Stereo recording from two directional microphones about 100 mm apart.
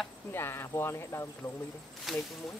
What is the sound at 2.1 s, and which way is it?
Speech, centre (ahead or behind).